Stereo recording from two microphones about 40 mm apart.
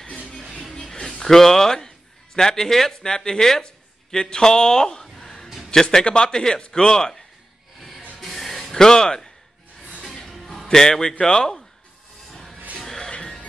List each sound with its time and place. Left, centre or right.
0.7 s music: centre
1.2 s a man's voice: centre
5.0 s a sound: centre
5.7 s speech: centre
8.4 s a sound: centre
10.0 s music: centre
10.7 s speech: centre
12.3 s music: centre